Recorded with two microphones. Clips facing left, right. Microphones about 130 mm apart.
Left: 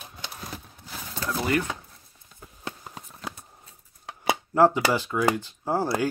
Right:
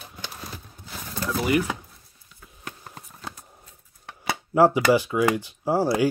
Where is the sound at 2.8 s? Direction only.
5° left (ahead or behind).